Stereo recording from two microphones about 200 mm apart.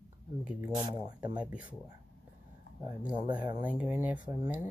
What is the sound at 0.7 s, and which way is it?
Speech, 20° right (ahead or behind).